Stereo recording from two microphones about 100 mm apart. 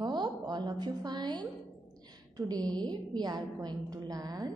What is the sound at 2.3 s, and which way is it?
A woman's voice, 40° right (ahead or behind).